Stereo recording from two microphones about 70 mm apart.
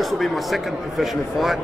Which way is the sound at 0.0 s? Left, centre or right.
Centre.